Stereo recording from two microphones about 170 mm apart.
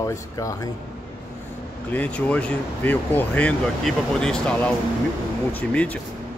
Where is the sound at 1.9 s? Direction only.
10° left (ahead or behind).